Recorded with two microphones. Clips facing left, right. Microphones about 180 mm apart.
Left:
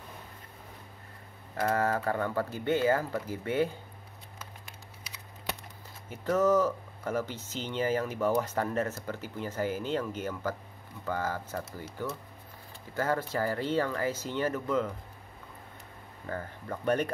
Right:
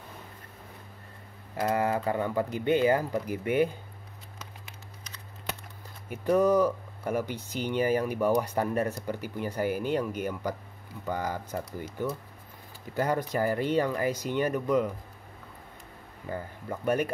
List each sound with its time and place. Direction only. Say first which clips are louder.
1.6 s speech: right 1 dB; 15° right (ahead or behind)
6.0 s speech: right 3 dB; 15° right (ahead or behind)
16.3 s speech: right 2 dB; 15° right (ahead or behind)